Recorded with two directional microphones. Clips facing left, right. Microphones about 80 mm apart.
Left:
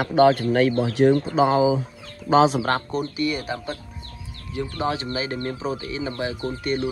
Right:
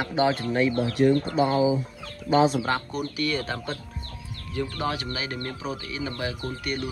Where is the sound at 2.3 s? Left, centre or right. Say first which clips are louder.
Left 4 dB; left.